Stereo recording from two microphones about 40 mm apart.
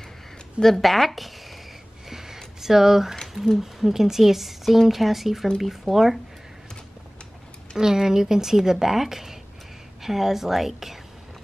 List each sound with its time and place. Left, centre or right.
0.6 s speech: centre
2.0 s a sound: centre
3.5 s a woman's voice: centre
7.7 s speech: centre